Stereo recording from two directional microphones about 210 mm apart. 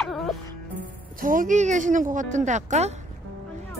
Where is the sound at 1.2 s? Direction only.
40° right (ahead or behind).